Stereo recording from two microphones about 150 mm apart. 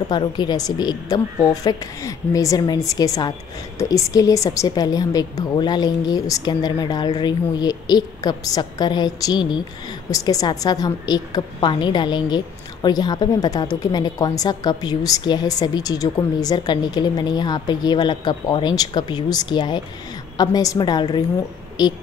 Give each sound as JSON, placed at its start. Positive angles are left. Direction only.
{"t": 0.1, "sound": "a woman's voice", "side_deg": 30}